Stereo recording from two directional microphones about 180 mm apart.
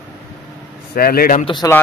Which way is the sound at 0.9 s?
55° left (ahead or behind).